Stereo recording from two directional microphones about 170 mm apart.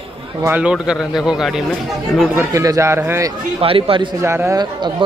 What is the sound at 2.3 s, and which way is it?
Speech, 20° right (ahead or behind).